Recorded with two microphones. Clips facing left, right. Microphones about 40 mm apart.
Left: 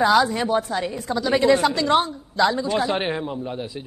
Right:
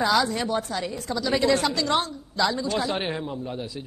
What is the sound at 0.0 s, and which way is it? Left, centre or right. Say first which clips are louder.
A woman's voice: left 5 dB; centre.